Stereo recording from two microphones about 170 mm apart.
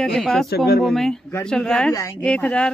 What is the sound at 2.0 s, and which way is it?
Speech, 15° left (ahead or behind).